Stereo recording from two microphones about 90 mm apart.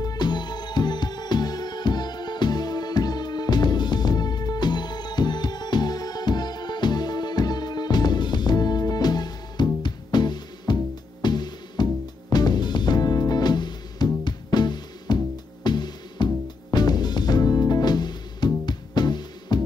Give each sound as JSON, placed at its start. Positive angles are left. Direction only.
{"t": 0.0, "sound": "music", "side_deg": 50}